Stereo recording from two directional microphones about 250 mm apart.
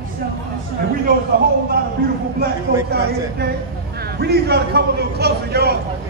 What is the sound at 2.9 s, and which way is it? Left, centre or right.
A man's voice, right.